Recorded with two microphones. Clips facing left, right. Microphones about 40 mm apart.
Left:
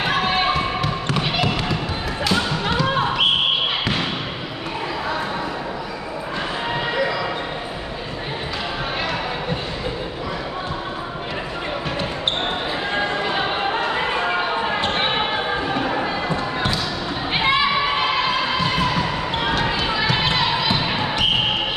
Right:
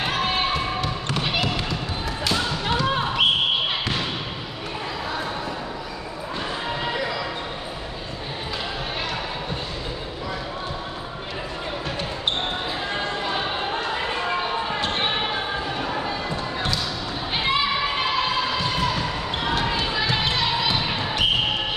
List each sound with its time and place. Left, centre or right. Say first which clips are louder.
0.2 s basketball bounce: left 4 dB; centre
1.0 s trickle: left 3 dB; centre
2.7 s basketball bounce: left 3 dB; centre
3.8 s basketball bounce: left 4 dB; left
12.9 s a sound: left 5 dB; left
15.7 s music: left 5 dB; left
17.3 s a sound: left 5 dB; left
18.8 s basketball bounce: left 3 dB; centre
19.7 s a sound: left 3 dB; centre
20.2 s basketball bounce: left 3 dB; left